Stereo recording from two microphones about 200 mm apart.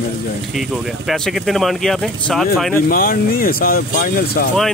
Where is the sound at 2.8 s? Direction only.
45° left (ahead or behind).